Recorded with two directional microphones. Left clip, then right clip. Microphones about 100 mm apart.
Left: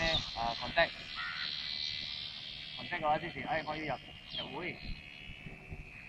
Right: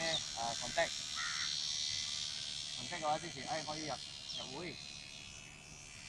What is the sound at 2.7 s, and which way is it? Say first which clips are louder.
Speech: left 6 dB; 35° right (ahead or behind).